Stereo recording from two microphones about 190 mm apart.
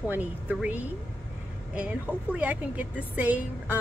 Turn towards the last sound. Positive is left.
turn(degrees=-10)  # may be behind; listen again after turning